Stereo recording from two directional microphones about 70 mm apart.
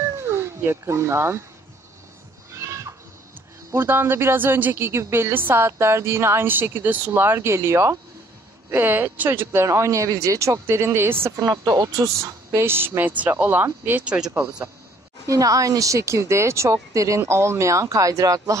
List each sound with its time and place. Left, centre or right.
0.3 s speech: right
3.7 s speech: right
8.6 s speech: right
11.6 s speech: right
12.2 s a woman's voice: right
14.0 s speech: centre
15.2 s speech: right